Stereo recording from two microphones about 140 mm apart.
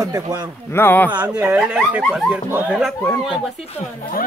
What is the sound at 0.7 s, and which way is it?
Speech, 15° left (ahead or behind).